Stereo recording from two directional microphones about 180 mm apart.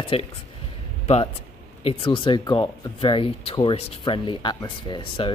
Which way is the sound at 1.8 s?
30° left (ahead or behind).